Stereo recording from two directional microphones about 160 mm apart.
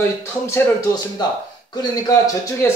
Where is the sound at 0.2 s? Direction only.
20° left (ahead or behind).